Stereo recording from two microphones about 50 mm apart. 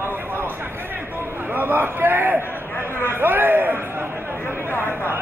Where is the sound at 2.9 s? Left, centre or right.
Left.